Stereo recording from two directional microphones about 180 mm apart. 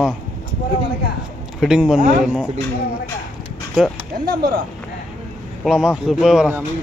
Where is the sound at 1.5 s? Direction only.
5° right (ahead or behind).